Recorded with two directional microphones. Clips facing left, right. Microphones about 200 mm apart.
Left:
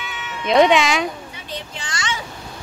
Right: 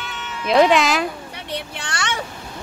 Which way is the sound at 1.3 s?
65° right (ahead or behind).